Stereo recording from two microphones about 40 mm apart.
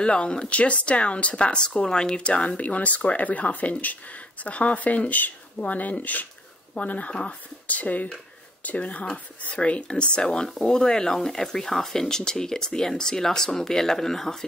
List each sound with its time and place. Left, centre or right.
0.0 s speech: left